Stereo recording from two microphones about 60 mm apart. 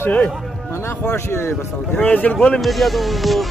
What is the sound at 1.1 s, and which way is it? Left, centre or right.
Speech, left.